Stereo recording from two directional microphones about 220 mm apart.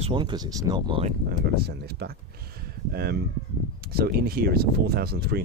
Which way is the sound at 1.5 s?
45° right (ahead or behind).